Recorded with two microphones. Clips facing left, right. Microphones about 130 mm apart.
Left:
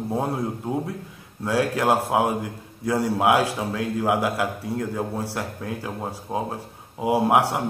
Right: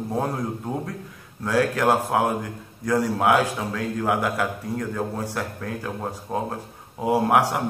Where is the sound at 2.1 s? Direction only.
20° left (ahead or behind).